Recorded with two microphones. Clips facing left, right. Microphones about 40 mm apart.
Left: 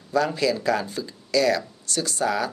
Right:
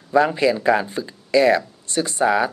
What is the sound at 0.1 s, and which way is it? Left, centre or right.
Speech, right.